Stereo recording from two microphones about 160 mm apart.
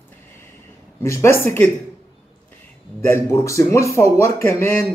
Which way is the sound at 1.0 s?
15° left (ahead or behind).